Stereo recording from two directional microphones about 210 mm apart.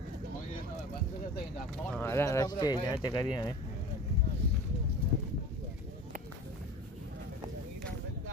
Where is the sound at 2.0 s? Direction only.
10° left (ahead or behind).